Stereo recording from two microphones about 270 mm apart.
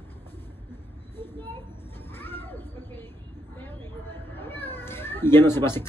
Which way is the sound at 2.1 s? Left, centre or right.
Centre.